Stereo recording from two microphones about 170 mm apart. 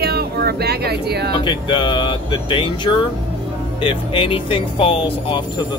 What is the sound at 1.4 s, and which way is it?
Speech, 30° left (ahead or behind).